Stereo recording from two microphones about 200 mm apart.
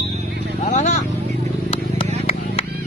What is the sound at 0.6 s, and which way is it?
Vehicle, 35° left (ahead or behind).